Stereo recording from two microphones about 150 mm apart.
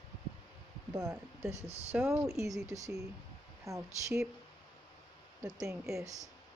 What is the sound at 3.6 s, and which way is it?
Speech, 20° right (ahead or behind).